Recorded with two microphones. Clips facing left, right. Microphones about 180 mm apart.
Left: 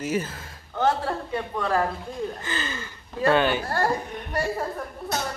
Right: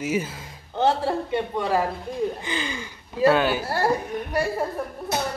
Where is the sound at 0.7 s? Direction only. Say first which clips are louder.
Right 2 dB; 25° right (ahead or behind); by 3.8 s 5° right (ahead or behind).